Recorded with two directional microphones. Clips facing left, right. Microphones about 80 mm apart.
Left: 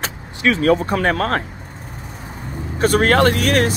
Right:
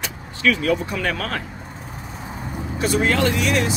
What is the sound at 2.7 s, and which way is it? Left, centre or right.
Speech, left.